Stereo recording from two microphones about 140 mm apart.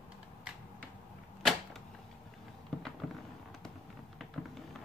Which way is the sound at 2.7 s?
5° left (ahead or behind).